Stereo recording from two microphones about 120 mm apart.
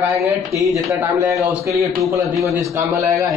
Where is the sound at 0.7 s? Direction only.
25° right (ahead or behind).